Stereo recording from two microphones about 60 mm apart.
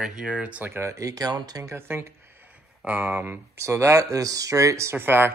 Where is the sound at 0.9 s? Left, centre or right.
Right.